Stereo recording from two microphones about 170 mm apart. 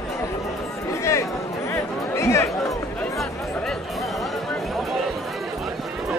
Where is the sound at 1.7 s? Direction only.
15° left (ahead or behind).